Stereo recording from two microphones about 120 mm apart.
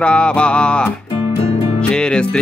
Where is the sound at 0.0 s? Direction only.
10° left (ahead or behind).